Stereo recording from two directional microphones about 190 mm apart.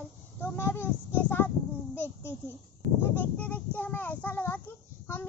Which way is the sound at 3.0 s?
10° left (ahead or behind).